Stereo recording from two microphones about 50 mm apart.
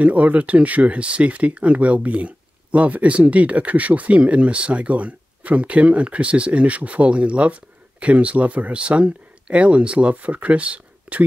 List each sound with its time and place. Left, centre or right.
0.0 s speech: right